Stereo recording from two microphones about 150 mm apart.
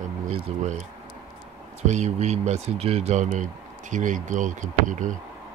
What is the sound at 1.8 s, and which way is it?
Speech, 50° right (ahead or behind).